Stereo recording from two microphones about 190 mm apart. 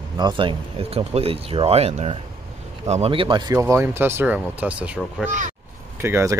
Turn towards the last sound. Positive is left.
turn(degrees=-15)  # may be behind; listen again after turning